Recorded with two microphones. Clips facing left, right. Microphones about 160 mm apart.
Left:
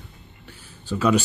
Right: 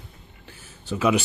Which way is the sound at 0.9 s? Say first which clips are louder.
Left 1 dB; 15° right (ahead or behind).